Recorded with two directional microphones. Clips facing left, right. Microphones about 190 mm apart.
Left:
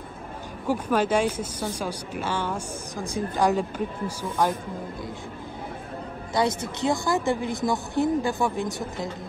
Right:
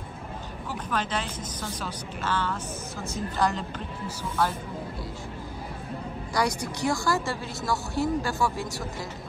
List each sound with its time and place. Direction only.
0.7 s speech: 10° left (ahead or behind)
6.3 s a woman's voice: 25° left (ahead or behind)